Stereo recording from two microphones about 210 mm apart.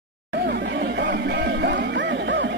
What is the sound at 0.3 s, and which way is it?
Music, 55° right (ahead or behind).